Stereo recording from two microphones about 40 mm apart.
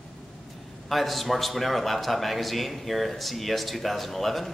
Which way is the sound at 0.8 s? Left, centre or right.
Centre.